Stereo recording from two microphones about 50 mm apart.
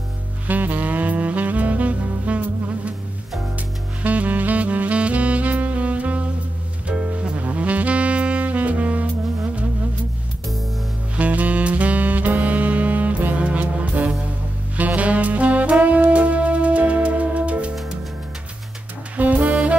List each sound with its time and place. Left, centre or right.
0.5 s saxophone: right
11.1 s saxophone: right
14.8 s music: right
19.1 s saxophone: right